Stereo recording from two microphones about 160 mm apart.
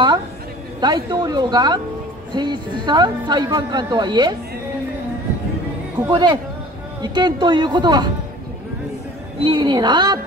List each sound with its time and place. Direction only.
0.7 s speech: 25° right (ahead or behind)
6.0 s speech: 25° right (ahead or behind)
9.4 s speech: 30° right (ahead or behind)